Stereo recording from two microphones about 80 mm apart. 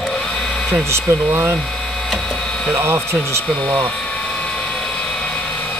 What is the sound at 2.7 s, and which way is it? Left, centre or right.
Speech, right.